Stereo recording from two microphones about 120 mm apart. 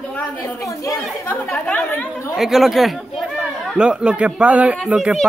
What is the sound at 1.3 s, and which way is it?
Chatter, 15° left (ahead or behind).